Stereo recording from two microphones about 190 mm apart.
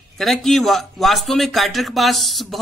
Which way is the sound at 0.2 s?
Centre (ahead or behind).